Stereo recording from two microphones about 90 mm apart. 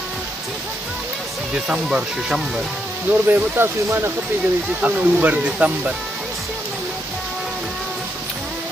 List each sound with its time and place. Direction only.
1.5 s speech: 10° right (ahead or behind)
3.1 s speech: 25° right (ahead or behind)
4.8 s speech: 15° right (ahead or behind)